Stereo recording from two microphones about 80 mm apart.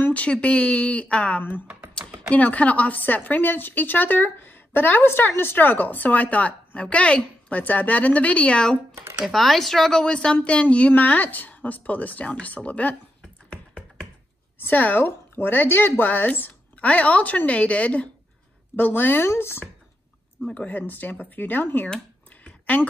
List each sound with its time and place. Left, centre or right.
0.1 s speech: centre
2.0 s typing: right
2.3 s speech: centre
9.2 s speech: centre
13.2 s finger snapping: centre
14.6 s speech: left
20.5 s speech: centre
21.8 s a sound: centre